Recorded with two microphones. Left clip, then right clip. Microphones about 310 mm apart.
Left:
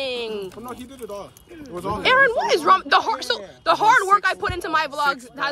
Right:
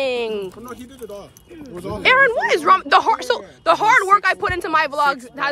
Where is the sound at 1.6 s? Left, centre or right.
Centre.